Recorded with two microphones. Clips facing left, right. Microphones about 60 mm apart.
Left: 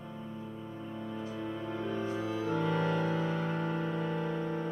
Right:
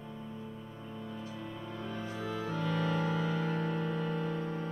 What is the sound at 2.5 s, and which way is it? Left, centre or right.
Music, left.